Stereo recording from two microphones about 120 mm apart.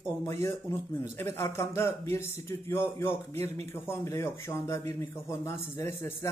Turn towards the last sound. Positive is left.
turn(degrees=25)  # may be behind; listen again after turning